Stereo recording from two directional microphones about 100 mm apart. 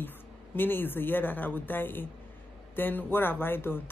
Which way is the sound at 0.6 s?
20° left (ahead or behind).